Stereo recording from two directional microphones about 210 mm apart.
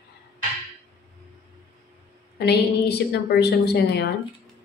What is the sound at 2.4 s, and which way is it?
A woman's voice, 50° left (ahead or behind).